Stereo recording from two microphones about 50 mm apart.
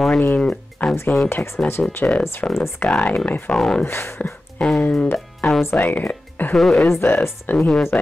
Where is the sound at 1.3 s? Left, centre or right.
Left.